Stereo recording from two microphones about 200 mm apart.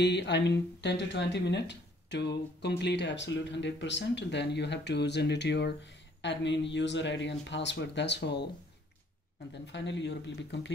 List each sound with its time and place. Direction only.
0.0 s speech: 60° left (ahead or behind)
9.5 s speech: 60° left (ahead or behind)